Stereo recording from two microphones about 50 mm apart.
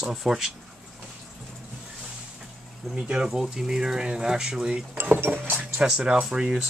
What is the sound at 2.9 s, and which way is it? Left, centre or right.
Speech, centre.